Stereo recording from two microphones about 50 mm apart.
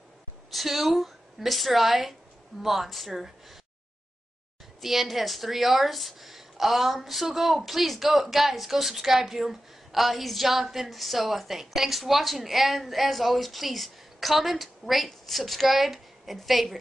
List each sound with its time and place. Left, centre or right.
0.5 s a woman's voice: centre
4.8 s a woman's voice: centre